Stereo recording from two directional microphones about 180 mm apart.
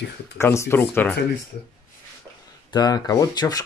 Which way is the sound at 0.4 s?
15° left (ahead or behind).